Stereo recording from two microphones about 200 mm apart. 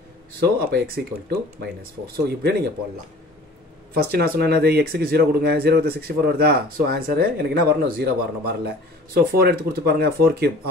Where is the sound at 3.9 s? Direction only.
50° right (ahead or behind).